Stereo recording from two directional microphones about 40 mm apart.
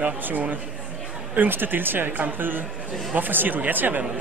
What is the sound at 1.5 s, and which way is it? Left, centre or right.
A man's voice, right.